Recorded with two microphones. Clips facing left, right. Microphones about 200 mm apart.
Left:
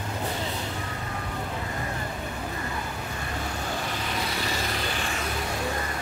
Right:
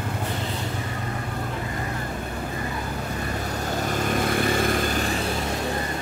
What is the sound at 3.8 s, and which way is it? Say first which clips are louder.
Vehicle: right 7 dB; 45° right (ahead or behind).